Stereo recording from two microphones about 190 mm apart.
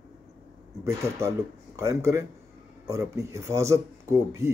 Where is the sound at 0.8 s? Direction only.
15° right (ahead or behind).